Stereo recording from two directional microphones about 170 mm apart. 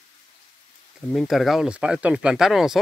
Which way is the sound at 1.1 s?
Centre (ahead or behind).